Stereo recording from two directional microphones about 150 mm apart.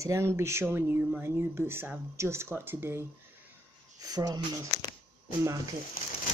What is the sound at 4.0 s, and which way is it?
Speech, 25° right (ahead or behind).